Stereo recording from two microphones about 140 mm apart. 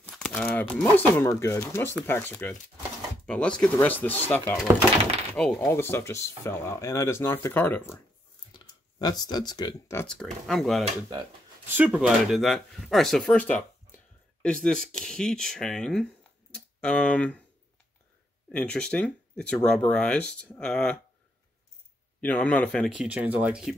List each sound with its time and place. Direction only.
0.3 s speech: 15° left (ahead or behind)
5.7 s speech: 15° left (ahead or behind)
8.5 s speech: 30° left (ahead or behind)
10.0 s speech: centre (ahead or behind)
11.6 s speech: 10° right (ahead or behind)
12.4 s speech: centre (ahead or behind)
18.5 s speech: 5° left (ahead or behind)
22.2 s speech: 10° left (ahead or behind)
22.9 s speech: 10° right (ahead or behind)